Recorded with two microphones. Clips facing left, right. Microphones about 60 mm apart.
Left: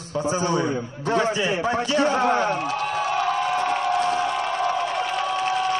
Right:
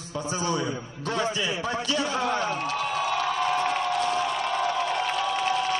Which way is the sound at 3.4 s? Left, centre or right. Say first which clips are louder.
Left 2 dB; centre.